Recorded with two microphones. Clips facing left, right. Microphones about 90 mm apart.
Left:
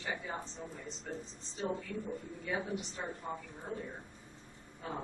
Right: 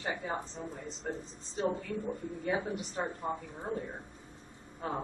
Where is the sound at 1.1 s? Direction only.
45° right (ahead or behind).